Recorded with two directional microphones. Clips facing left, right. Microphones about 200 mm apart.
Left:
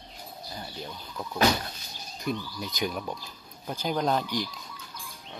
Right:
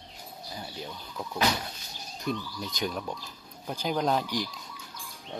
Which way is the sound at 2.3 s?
10° left (ahead or behind).